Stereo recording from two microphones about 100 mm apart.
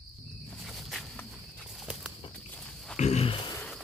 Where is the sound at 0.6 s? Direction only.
Centre (ahead or behind).